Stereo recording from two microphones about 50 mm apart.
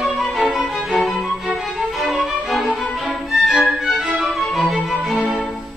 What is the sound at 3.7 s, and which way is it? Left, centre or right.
Music, centre.